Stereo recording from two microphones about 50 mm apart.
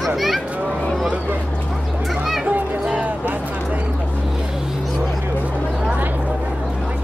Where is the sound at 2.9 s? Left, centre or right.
Right.